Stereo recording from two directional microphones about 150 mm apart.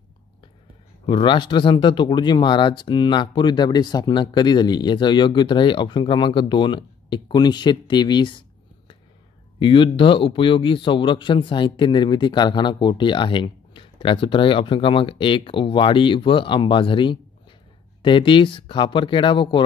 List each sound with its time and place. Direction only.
1.0 s speech: 35° left (ahead or behind)